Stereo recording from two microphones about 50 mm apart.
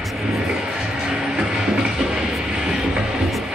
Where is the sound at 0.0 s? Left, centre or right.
Centre.